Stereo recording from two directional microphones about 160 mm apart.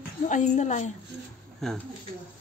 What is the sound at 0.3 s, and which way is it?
Speech, 50° left (ahead or behind).